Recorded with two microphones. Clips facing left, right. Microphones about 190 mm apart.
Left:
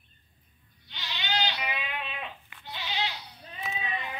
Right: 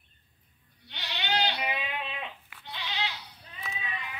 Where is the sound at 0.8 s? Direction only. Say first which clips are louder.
Right 2 dB; 65° right (ahead or behind).